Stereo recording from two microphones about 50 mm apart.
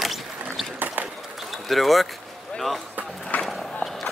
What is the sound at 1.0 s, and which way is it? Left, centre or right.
Run, right.